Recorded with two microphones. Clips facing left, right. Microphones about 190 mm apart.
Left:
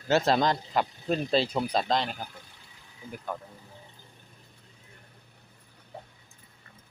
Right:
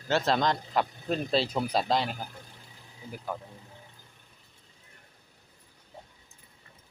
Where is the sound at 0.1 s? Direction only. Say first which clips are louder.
Left 2 dB; 10° left (ahead or behind); by 2.2 s 5° right (ahead or behind).